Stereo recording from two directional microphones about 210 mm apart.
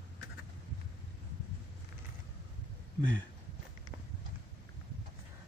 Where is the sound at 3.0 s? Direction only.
60° right (ahead or behind).